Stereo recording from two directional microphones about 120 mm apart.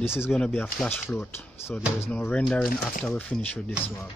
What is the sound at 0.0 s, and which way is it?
Speech, 20° left (ahead or behind).